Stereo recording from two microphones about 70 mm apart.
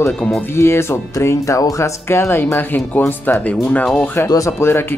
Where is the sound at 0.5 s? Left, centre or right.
Left.